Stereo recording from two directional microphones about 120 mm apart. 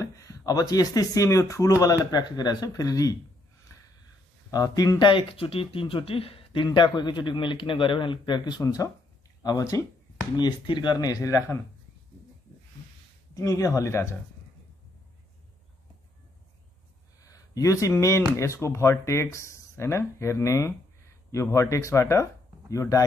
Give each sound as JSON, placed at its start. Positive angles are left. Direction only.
{"t": 0.0, "sound": "speech", "side_deg": 25}
{"t": 4.5, "sound": "speech", "side_deg": 30}
{"t": 5.0, "sound": "speech", "side_deg": 50}
{"t": 13.3, "sound": "speech", "side_deg": 25}
{"t": 17.2, "sound": "speech", "side_deg": 30}